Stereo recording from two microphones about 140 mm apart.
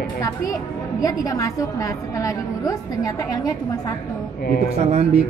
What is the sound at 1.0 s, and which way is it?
A woman's voice, 25° left (ahead or behind).